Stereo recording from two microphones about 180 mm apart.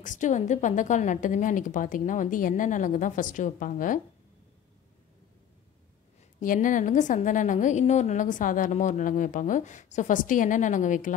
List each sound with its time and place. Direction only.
0.0 s a woman's voice: 45° left (ahead or behind)
6.4 s a woman's voice: 50° left (ahead or behind)